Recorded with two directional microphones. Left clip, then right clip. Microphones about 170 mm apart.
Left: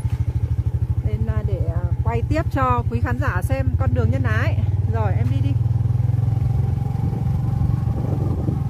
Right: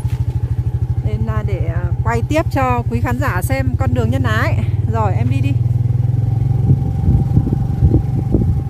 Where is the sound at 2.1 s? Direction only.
25° right (ahead or behind).